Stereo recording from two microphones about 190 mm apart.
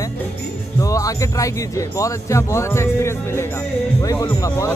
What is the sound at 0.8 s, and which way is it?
Speech, 15° left (ahead or behind).